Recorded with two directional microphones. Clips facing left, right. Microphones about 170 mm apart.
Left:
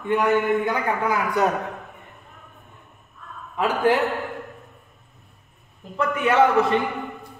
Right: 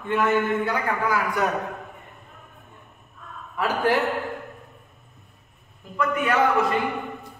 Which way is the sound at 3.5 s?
20° left (ahead or behind).